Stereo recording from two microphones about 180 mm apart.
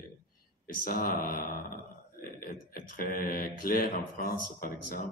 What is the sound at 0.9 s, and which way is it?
Speech, 55° left (ahead or behind).